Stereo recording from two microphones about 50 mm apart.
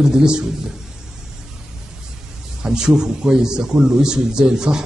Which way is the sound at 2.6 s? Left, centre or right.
Centre.